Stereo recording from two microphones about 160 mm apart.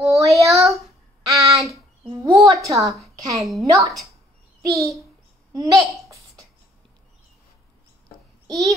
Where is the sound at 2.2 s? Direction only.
25° right (ahead or behind).